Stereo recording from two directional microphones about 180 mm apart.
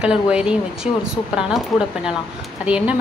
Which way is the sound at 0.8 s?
40° left (ahead or behind).